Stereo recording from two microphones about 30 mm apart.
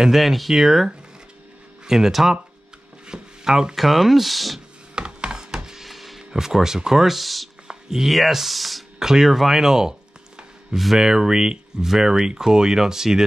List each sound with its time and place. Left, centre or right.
0.0 s speech: centre
3.1 s chopping: right
3.7 s speech: centre
4.9 s a sound: right
5.9 s a sound: centre
6.3 s speech: centre
7.2 s speech: centre
9.0 s a sound: centre
11.0 s speech: right